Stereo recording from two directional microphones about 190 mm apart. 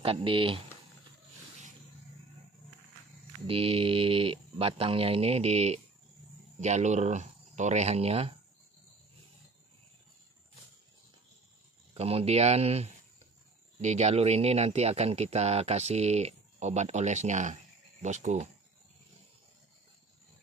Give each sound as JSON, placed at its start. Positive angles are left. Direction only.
{"t": 0.0, "sound": "speech", "side_deg": -30}
{"t": 3.4, "sound": "speech", "side_deg": -30}
{"t": 11.9, "sound": "speech", "side_deg": -30}